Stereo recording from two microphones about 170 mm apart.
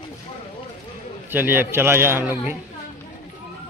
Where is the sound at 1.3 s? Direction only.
10° right (ahead or behind).